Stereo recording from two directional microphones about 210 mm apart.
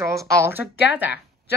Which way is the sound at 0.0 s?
15° right (ahead or behind).